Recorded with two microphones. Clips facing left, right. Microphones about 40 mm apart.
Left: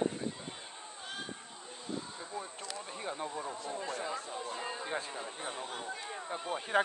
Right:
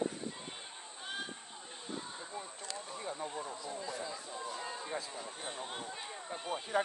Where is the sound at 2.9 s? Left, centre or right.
Left.